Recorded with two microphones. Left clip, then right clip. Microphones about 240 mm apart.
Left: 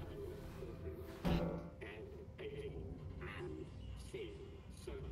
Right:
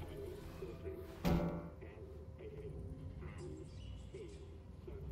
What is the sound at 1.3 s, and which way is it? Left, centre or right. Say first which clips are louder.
Music: even; centre.